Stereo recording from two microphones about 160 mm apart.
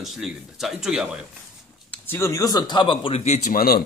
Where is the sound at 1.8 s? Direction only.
15° left (ahead or behind).